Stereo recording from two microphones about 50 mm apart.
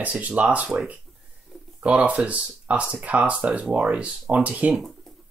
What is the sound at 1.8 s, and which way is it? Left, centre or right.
Speech, right.